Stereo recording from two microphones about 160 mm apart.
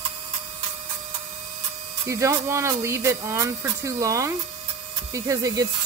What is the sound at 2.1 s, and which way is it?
Speech, 20° right (ahead or behind).